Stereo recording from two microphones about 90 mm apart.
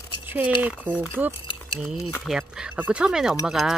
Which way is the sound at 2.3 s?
10° right (ahead or behind).